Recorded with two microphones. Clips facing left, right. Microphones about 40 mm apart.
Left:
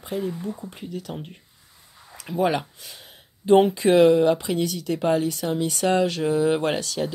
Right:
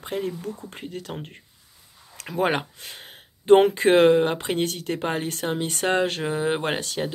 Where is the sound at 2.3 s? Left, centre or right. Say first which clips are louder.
Left 1 dB; right.